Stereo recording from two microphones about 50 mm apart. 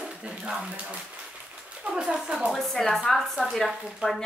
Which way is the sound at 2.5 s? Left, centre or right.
Centre.